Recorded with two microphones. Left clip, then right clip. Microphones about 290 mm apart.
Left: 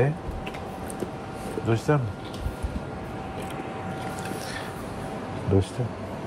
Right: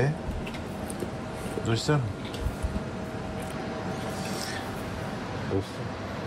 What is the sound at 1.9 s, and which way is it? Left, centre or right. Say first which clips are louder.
Speech: left 3 dB; centre.